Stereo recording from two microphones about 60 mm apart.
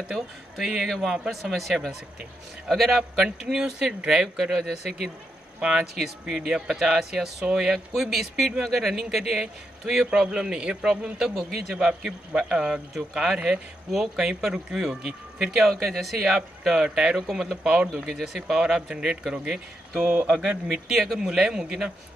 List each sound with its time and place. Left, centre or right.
0.1 s a man's voice: centre
18.9 s a man's voice: centre
20.0 s speech: right
20.2 s a man's voice: centre